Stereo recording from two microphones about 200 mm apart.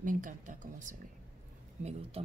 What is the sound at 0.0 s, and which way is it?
Speech, 40° right (ahead or behind).